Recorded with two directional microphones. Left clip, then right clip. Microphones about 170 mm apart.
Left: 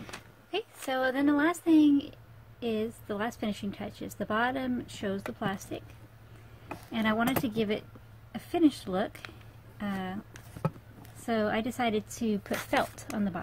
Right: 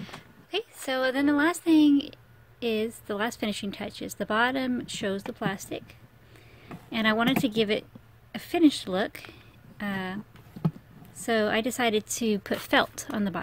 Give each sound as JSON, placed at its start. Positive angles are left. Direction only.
{"t": 0.0, "sound": "a sound", "side_deg": -20}
{"t": 2.6, "sound": "speech", "side_deg": -25}
{"t": 6.9, "sound": "a woman's voice", "side_deg": -35}
{"t": 11.2, "sound": "a woman's voice", "side_deg": -35}